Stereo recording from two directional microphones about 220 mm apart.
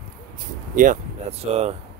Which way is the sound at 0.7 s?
35° right (ahead or behind).